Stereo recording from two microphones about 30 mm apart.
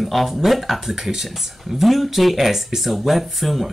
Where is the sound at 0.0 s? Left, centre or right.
Centre.